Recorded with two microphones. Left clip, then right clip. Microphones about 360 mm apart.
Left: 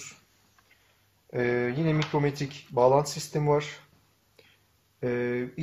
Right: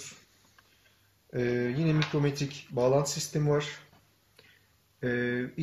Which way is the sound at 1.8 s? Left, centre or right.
Centre.